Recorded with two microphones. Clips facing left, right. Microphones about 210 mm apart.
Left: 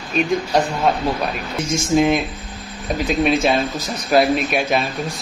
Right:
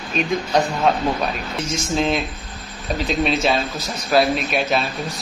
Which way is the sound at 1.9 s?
10° left (ahead or behind).